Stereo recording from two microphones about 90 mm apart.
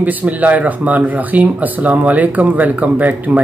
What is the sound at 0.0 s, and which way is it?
Speech, 20° right (ahead or behind).